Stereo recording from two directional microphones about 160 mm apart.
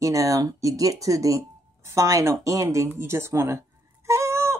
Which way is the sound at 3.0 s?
15° right (ahead or behind).